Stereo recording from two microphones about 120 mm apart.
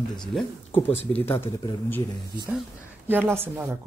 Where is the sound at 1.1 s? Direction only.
20° left (ahead or behind).